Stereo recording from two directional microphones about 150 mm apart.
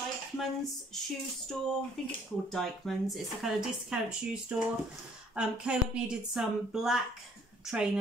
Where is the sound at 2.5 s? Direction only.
Centre (ahead or behind).